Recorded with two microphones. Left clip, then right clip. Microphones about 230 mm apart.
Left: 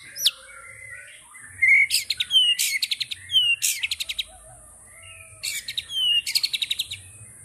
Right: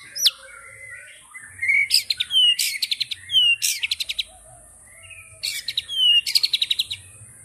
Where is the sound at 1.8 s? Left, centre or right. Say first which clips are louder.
Right 1 dB; centre.